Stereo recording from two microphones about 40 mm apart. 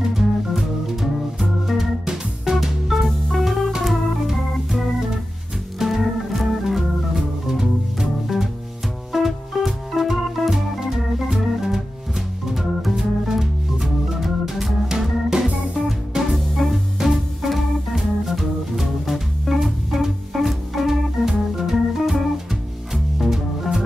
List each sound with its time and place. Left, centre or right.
0.1 s music: centre
2.0 s music: centre
3.1 s music: centre
3.8 s organ: centre
15.7 s music: centre
16.3 s music: centre
17.0 s organ: centre
23.1 s music: centre